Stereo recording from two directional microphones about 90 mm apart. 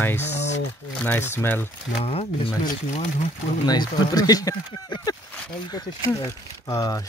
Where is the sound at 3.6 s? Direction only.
50° left (ahead or behind).